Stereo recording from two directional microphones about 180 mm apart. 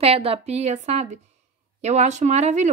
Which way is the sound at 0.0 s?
30° right (ahead or behind).